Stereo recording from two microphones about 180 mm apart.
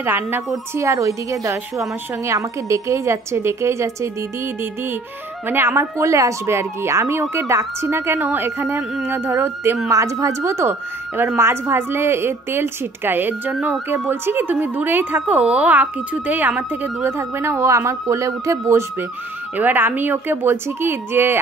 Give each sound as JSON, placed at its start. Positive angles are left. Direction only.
{"t": 0.0, "sound": "speech", "side_deg": -10}
{"t": 5.5, "sound": "speech", "side_deg": -15}